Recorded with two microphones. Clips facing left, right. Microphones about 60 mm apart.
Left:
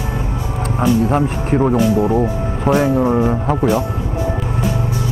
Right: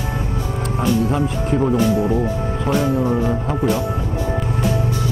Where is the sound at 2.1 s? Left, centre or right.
Left.